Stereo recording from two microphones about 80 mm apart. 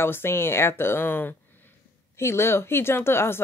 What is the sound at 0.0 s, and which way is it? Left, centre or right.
Speech, left.